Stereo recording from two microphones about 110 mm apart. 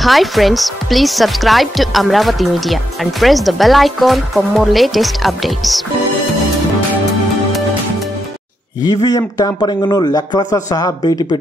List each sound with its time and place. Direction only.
0.0 s speech: centre (ahead or behind)
8.8 s speech: 35° left (ahead or behind)